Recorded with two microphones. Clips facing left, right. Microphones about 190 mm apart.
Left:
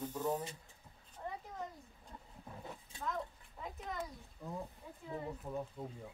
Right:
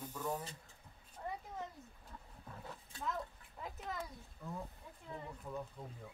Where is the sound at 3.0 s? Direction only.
Centre (ahead or behind).